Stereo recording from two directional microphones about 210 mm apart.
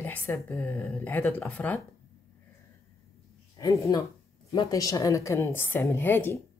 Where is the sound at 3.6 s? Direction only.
15° left (ahead or behind).